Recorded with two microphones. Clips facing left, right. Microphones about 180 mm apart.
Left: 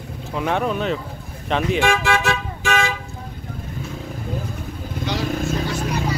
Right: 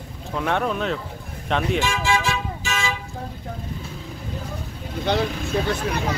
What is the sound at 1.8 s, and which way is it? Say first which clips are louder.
Car: left 4 dB; 60° left (ahead or behind).